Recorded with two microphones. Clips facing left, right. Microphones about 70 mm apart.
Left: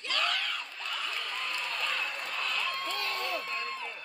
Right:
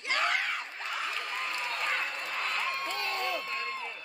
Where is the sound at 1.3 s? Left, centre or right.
Right.